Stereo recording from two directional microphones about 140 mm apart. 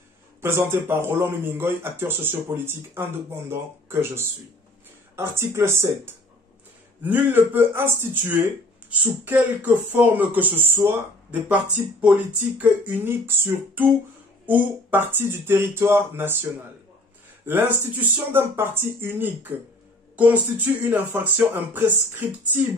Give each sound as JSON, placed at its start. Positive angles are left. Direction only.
{"t": 0.4, "sound": "speech", "side_deg": -15}
{"t": 17.5, "sound": "speech", "side_deg": -15}